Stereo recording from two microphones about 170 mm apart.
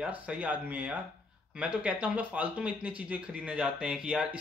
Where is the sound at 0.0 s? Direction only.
5° right (ahead or behind).